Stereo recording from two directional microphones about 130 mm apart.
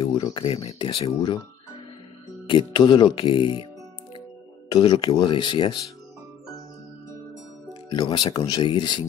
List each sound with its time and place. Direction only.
0.0 s speech: 40° left (ahead or behind)
2.4 s speech: 40° left (ahead or behind)
4.7 s speech: 35° left (ahead or behind)
7.9 s speech: 35° left (ahead or behind)